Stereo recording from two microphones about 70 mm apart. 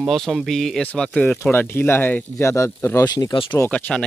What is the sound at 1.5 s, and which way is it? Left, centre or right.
Speech, left.